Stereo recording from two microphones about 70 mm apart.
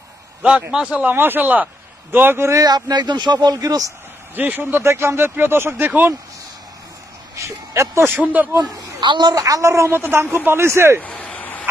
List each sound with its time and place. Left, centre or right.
0.4 s a man's voice: centre
1.1 s speech: right
2.6 s a man's voice: right
4.4 s speech: right
7.3 s speech: right
8.1 s speech: right
8.7 s a child's voice: right
9.4 s a woman's voice: right
11.0 s a sound: centre